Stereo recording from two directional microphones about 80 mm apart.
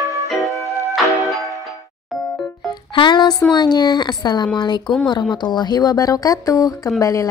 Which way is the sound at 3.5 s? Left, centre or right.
Left.